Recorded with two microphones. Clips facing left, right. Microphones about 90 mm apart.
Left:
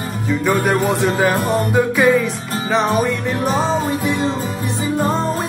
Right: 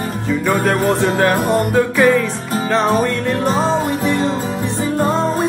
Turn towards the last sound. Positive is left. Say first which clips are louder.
# right 3 dB
turn(degrees=0)  # may be behind; listen again after turning